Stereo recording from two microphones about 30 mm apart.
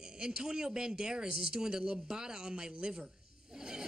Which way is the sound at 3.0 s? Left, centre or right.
Right.